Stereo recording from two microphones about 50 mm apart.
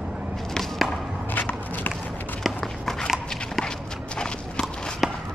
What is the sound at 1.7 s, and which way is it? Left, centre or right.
Run, left.